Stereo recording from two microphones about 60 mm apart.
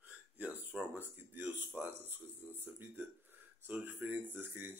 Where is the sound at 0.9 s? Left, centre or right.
Right.